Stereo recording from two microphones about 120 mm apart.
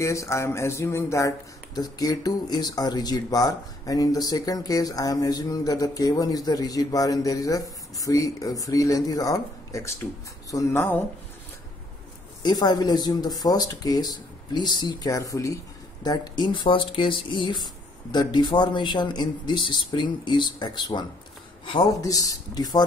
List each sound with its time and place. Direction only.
0.0 s speech: 25° left (ahead or behind)
12.4 s speech: 35° left (ahead or behind)
22.0 s speech: 30° left (ahead or behind)